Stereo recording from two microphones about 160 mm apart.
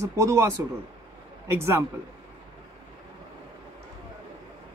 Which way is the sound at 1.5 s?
15° right (ahead or behind).